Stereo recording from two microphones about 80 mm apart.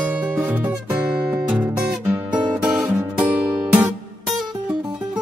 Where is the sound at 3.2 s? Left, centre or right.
Centre.